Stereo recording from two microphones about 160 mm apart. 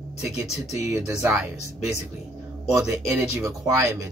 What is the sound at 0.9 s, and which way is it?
Speech, 15° right (ahead or behind).